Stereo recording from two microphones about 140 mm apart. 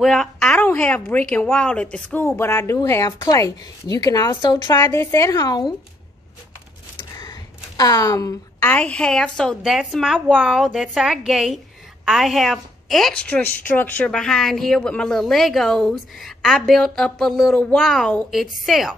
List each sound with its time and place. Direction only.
0.0 s a woman's voice: 5° left (ahead or behind); by 5.7 s 30° left (ahead or behind)
7.2 s a woman's voice: 30° left (ahead or behind); by 18.9 s centre (ahead or behind)